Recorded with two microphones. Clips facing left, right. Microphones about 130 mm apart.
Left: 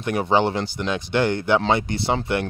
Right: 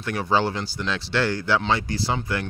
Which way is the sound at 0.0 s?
20° left (ahead or behind).